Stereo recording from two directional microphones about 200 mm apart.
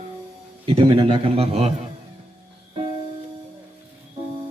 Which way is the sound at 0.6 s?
30° right (ahead or behind).